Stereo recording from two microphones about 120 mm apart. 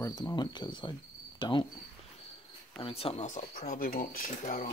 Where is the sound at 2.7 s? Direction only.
50° left (ahead or behind).